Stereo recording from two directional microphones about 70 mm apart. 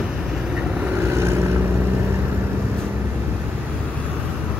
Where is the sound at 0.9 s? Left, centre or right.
Right.